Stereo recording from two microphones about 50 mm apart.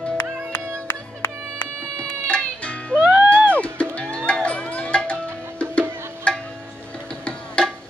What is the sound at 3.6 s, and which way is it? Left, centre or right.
Music, left.